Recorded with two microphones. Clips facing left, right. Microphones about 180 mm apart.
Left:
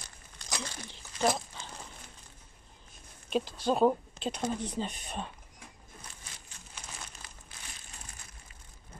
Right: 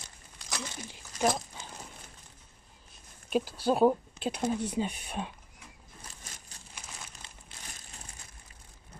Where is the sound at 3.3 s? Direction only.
5° right (ahead or behind).